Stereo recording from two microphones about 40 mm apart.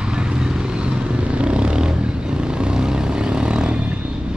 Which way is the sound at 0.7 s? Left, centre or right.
Right.